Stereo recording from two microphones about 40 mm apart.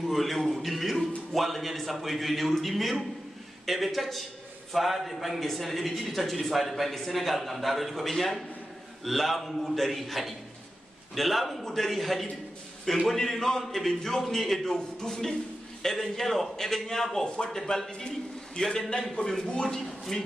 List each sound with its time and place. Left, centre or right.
0.0 s music: centre
1.3 s a man's voice: centre
17.9 s a man's voice: left
19.8 s a man's voice: centre